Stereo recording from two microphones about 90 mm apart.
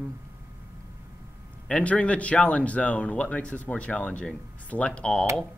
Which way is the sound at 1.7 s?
15° left (ahead or behind).